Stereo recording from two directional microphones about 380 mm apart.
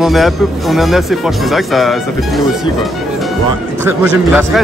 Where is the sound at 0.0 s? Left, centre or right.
Centre.